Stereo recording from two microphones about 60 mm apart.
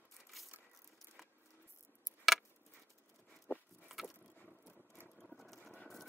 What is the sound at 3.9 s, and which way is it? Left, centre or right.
Vehicle, centre.